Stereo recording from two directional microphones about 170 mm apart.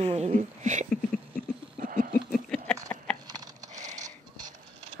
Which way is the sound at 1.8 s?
50° right (ahead or behind).